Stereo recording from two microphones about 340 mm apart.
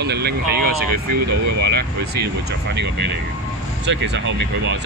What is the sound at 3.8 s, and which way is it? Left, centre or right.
Speech, right.